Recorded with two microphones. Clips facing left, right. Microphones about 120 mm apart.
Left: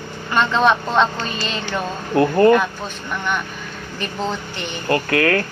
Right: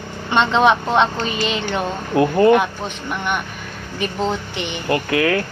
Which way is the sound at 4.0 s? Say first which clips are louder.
Right 3 dB; 15° right (ahead or behind).